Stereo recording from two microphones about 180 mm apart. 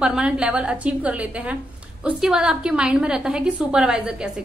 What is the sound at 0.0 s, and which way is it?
A woman's voice, 5° right (ahead or behind).